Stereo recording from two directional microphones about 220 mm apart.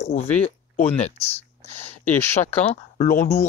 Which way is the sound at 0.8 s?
30° left (ahead or behind).